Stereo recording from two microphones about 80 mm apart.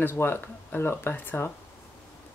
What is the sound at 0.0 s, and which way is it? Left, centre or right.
Speech, left.